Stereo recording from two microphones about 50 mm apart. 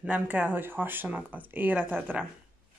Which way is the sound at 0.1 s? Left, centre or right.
Right.